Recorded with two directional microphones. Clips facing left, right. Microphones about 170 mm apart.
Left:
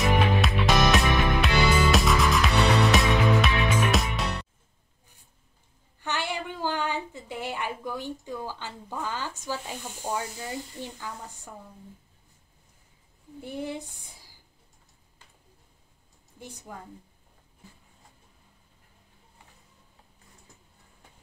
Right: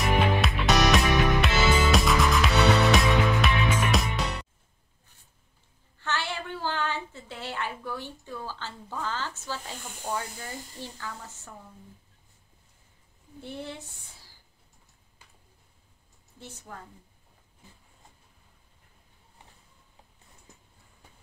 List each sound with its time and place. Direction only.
0.0 s music: centre (ahead or behind)
5.9 s a sound: 15° left (ahead or behind)
9.5 s speech: 15° left (ahead or behind)
13.4 s speech: 15° left (ahead or behind)
16.3 s speech: 15° left (ahead or behind)